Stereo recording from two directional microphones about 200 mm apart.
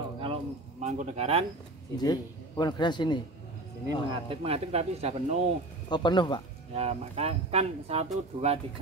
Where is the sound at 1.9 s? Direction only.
20° left (ahead or behind).